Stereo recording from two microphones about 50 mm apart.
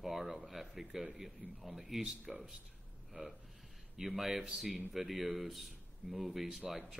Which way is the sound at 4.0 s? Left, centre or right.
Centre.